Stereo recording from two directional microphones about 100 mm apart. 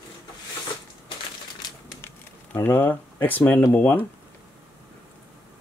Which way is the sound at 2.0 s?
20° left (ahead or behind).